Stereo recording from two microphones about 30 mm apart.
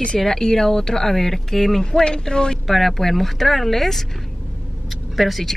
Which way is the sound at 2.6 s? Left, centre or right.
Centre.